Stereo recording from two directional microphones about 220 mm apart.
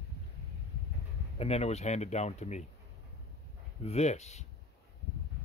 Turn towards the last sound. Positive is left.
turn(degrees=30)  # may be behind; listen again after turning